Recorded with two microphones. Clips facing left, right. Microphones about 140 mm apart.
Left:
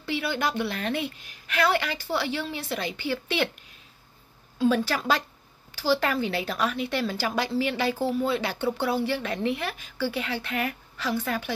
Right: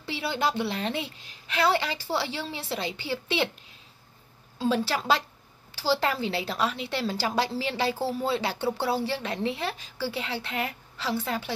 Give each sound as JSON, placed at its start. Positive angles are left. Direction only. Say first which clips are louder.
{"t": 0.0, "sound": "a woman's voice", "louder": "left 1 dB", "side_deg": -25}
{"t": 4.6, "sound": "a woman's voice", "louder": "left 3 dB", "side_deg": -25}